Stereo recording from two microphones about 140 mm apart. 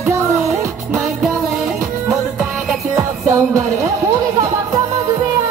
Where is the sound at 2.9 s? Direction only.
20° right (ahead or behind).